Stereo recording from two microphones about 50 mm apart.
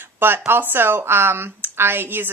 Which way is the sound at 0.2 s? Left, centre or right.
Right.